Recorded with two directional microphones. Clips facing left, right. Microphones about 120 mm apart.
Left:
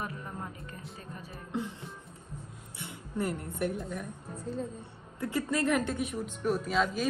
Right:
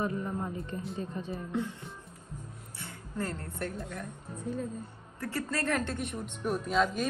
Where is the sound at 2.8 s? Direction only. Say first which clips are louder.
Left 3 dB; 20° left (ahead or behind).